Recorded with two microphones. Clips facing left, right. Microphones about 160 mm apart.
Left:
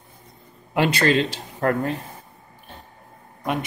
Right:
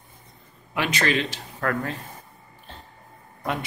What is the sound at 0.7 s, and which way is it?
A man's voice, 35° left (ahead or behind).